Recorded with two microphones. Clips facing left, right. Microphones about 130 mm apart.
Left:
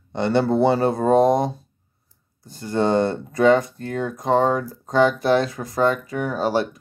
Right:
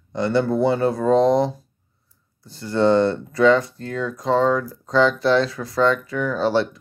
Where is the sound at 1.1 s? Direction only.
50° left (ahead or behind).